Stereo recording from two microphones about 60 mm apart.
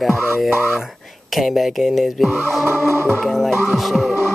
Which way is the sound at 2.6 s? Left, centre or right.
Right.